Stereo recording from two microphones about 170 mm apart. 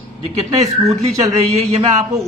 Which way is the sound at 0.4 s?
40° right (ahead or behind).